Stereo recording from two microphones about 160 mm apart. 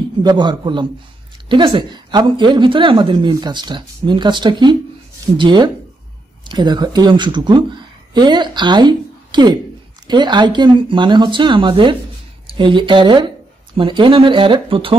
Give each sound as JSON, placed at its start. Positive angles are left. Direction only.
{"t": 0.2, "sound": "a woman's voice", "side_deg": -30}